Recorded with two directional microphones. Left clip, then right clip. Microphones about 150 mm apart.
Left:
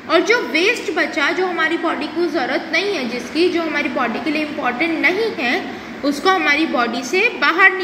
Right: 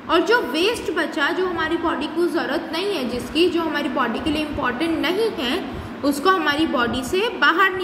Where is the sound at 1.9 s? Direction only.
10° right (ahead or behind).